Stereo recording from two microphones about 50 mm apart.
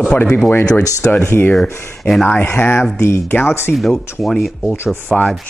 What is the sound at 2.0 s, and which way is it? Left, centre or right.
Speech, centre.